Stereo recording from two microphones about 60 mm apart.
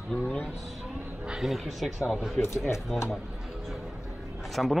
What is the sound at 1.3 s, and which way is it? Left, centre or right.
Speech, centre.